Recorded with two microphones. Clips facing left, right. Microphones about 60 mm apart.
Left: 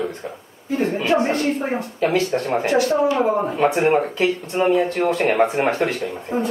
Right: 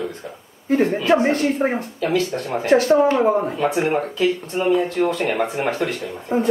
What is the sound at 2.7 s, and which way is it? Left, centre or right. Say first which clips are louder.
Speech: right 4 dB; right.